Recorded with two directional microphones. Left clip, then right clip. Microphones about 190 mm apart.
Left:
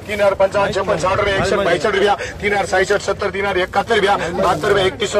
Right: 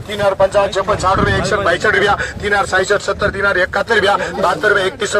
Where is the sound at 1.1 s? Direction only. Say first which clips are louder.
Right 2 dB; 10° right (ahead or behind).